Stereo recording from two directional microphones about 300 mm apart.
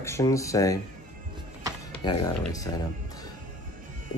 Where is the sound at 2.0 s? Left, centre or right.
Centre.